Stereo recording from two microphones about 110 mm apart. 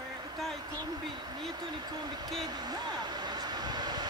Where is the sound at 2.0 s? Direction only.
40° right (ahead or behind).